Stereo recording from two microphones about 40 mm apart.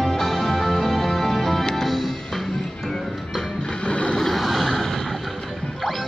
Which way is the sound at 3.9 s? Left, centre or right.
Left.